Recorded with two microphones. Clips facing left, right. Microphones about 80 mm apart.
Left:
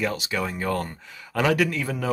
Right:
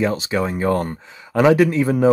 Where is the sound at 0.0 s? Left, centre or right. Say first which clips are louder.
Right 7 dB; right.